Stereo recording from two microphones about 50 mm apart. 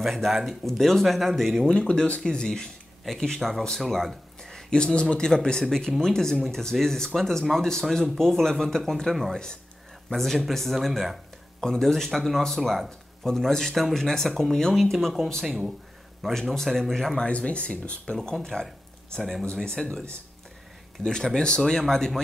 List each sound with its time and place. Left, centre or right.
0.0 s speech: centre
1.7 s speech: centre
4.4 s a sound: centre
5.1 s speech: centre
11.6 s speech: centre
15.4 s speech: centre
16.2 s speech: centre
17.2 s speech: left
18.1 s speech: centre